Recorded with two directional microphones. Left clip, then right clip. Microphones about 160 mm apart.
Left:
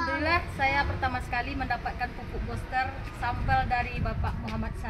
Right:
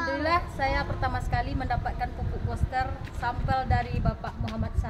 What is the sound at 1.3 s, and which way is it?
Speech, 35° right (ahead or behind).